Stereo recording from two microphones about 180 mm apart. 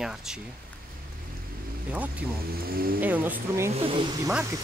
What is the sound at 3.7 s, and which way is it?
Speech, 30° right (ahead or behind).